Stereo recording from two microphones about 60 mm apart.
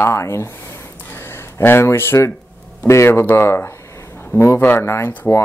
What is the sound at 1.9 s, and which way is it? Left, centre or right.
Speech, left.